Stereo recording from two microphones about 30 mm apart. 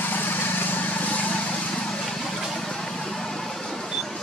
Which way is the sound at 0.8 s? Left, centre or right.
Left.